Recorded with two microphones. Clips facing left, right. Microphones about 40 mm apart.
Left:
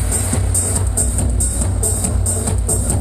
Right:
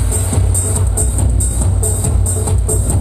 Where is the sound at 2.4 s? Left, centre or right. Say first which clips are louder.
Right 3 dB; right.